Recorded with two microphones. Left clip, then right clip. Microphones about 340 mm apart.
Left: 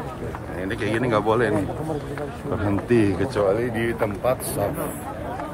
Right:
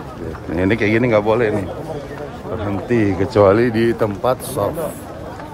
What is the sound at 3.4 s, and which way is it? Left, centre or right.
Speech, right.